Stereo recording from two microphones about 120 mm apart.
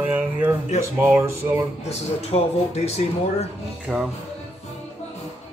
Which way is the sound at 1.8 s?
60° left (ahead or behind).